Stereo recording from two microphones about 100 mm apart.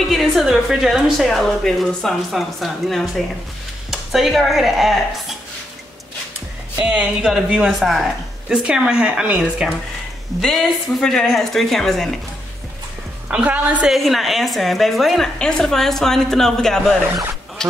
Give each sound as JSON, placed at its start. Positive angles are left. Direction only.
{"t": 0.0, "sound": "a woman's voice", "side_deg": 0}
{"t": 6.8, "sound": "a woman's voice", "side_deg": -10}
{"t": 10.4, "sound": "a woman's voice", "side_deg": 0}
{"t": 13.3, "sound": "a woman's voice", "side_deg": -15}
{"t": 13.9, "sound": "a woman's voice", "side_deg": 0}
{"t": 17.6, "sound": "quack", "side_deg": 5}